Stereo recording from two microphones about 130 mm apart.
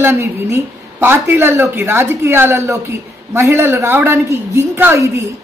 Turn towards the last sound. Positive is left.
turn(degrees=-20)  # may be behind; listen again after turning